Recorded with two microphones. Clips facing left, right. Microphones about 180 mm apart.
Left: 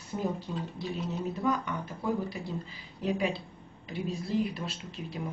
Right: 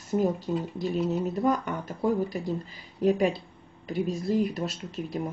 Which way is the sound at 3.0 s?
45° right (ahead or behind).